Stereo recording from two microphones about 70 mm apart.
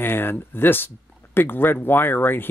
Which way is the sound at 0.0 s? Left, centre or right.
Left.